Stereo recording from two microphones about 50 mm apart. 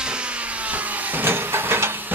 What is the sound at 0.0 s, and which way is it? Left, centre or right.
Vehicle, centre.